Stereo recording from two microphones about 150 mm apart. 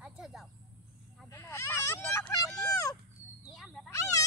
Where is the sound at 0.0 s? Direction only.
5° right (ahead or behind).